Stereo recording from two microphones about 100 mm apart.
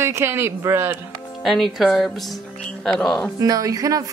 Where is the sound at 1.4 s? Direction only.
Centre (ahead or behind).